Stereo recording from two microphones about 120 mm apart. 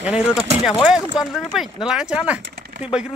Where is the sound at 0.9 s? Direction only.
5° right (ahead or behind).